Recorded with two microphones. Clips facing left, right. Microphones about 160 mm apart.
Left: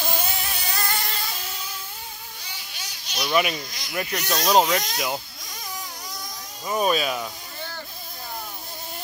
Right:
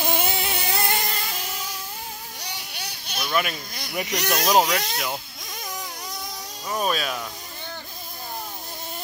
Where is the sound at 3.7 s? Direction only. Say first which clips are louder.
Right 3 dB; 55° right (ahead or behind).